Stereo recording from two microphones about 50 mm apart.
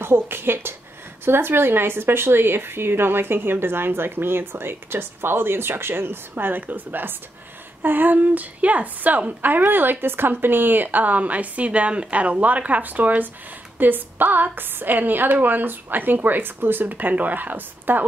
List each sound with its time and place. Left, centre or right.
0.0 s a woman's voice: right